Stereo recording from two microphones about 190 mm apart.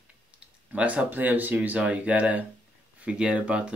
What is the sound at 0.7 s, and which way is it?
Speech, 5° right (ahead or behind).